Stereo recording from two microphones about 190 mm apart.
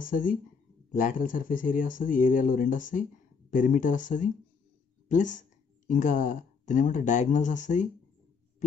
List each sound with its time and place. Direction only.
0.0 s speech: 45° left (ahead or behind)